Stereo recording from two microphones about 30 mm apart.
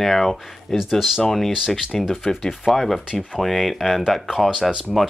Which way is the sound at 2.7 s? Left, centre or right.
Centre.